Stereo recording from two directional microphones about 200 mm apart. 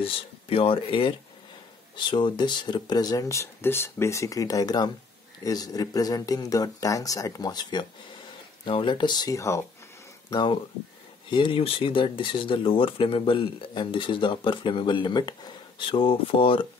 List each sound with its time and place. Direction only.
0.0 s speech: 25° left (ahead or behind)